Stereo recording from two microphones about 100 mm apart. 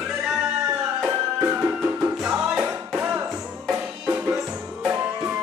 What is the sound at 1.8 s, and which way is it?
Music, 10° right (ahead or behind).